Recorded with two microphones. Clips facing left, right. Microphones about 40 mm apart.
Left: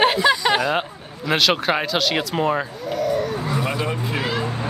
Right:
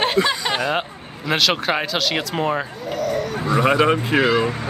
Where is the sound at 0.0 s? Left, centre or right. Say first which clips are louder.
Left 2 dB; centre.